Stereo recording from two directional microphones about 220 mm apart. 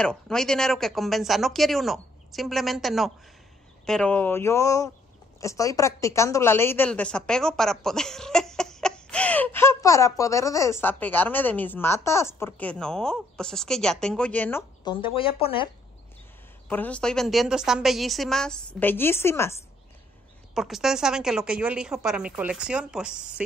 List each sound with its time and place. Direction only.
0.0 s a woman's voice: 5° left (ahead or behind)
14.9 s speech: 25° left (ahead or behind)
16.6 s speech: 10° left (ahead or behind)
20.5 s speech: centre (ahead or behind)